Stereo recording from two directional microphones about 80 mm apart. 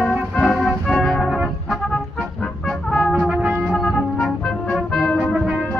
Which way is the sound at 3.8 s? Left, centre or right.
Centre.